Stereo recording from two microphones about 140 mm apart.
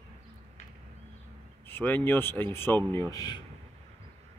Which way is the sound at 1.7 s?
15° left (ahead or behind).